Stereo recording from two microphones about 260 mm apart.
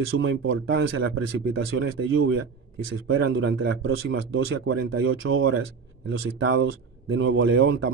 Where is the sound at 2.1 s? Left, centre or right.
Right.